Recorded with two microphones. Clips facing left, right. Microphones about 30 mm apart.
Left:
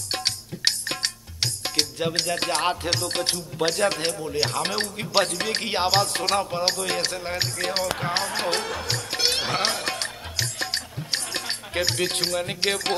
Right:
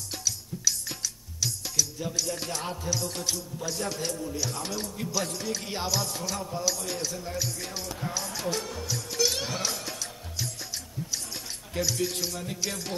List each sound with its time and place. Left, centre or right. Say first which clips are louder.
0.1 s music: left 6 dB; left